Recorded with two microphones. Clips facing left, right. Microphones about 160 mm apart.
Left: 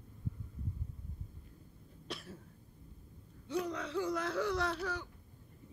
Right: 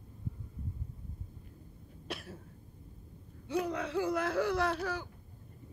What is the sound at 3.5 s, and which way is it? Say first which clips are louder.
Speech: right 3 dB; 55° right (ahead or behind).